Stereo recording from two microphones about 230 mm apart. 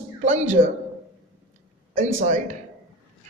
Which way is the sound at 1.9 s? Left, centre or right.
Right.